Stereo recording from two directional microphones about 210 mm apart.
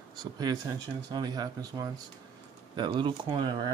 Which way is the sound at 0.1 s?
20° right (ahead or behind).